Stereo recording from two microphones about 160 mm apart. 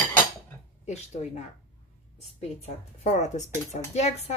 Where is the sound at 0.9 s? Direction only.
45° left (ahead or behind).